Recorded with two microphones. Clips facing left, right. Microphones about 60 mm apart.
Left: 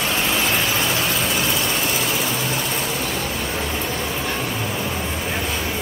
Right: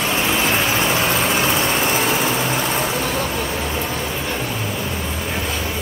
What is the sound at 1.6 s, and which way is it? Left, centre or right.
Vehicle, right.